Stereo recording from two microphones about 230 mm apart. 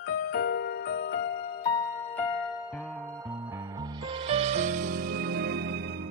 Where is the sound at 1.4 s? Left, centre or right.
Left.